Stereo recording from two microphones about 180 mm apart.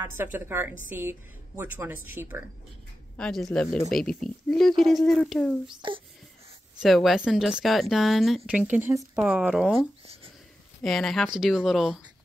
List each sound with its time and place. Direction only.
0.0 s a woman's voice: 10° right (ahead or behind)
3.2 s speech: 5° left (ahead or behind)
5.8 s speech: 25° right (ahead or behind)
6.8 s a woman's voice: centre (ahead or behind)
10.8 s speech: centre (ahead or behind)